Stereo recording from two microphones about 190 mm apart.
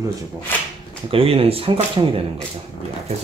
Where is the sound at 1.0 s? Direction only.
30° right (ahead or behind).